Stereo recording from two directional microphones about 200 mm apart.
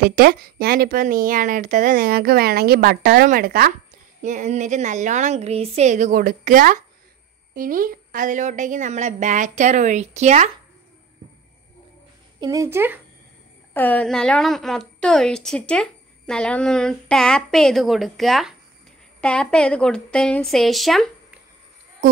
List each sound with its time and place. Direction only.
0.0 s speech: 45° right (ahead or behind)
4.2 s a woman's voice: 40° right (ahead or behind)
12.4 s speech: 15° right (ahead or behind)
13.7 s a woman's voice: 5° left (ahead or behind)